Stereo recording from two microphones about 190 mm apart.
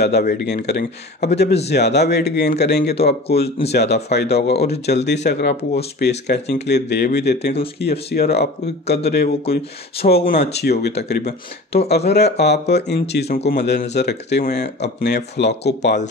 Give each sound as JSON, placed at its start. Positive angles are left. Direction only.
{"t": 0.0, "sound": "speech", "side_deg": 55}
{"t": 3.4, "sound": "speech", "side_deg": 30}
{"t": 3.7, "sound": "speech", "side_deg": 60}